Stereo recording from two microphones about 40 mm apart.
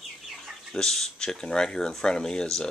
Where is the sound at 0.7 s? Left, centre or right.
Centre.